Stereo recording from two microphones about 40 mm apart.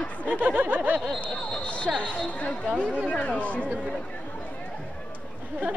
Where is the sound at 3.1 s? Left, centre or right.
Left.